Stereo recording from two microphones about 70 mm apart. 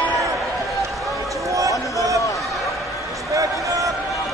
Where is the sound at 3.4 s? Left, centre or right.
Right.